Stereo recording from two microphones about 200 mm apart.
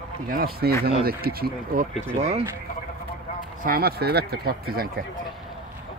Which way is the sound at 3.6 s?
50° right (ahead or behind).